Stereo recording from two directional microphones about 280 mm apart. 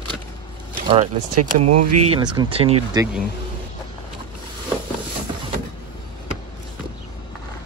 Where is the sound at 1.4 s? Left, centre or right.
Right.